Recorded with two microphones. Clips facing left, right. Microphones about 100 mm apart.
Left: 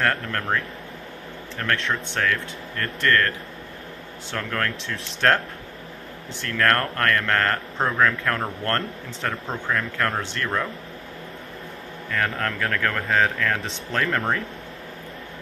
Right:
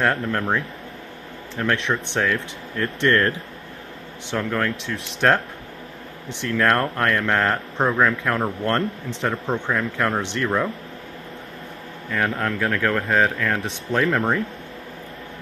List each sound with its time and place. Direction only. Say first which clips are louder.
0.0 s speech: right 3 dB; 10° right (ahead or behind)
3.0 s speech: right 2 dB; 25° right (ahead or behind)
4.3 s speech: right 4 dB; 10° right (ahead or behind)
6.4 s speech: right 2 dB; 10° right (ahead or behind)
12.1 s speech: right 2 dB; 5° right (ahead or behind)